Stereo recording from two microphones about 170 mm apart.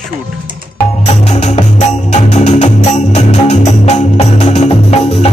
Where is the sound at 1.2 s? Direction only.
40° left (ahead or behind).